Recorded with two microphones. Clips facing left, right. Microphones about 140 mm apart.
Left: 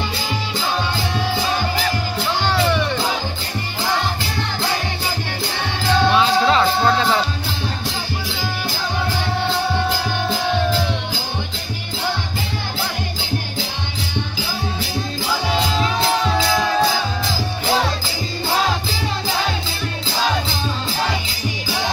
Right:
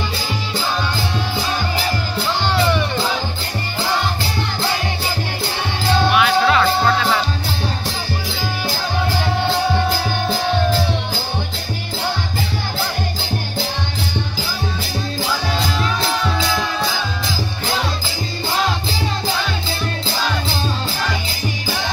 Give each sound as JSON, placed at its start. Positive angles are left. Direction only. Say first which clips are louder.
{"t": 6.1, "sound": "music", "louder": "right 1 dB", "side_deg": 25}